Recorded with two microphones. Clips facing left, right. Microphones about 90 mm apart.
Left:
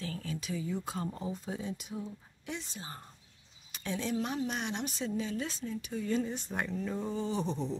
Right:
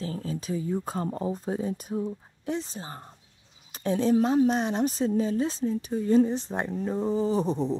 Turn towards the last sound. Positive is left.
turn(degrees=-35)  # may be behind; listen again after turning